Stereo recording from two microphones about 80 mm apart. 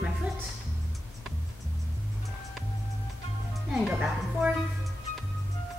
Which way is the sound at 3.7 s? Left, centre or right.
Centre.